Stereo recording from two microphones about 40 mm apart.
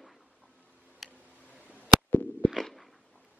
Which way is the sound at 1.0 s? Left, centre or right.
Centre.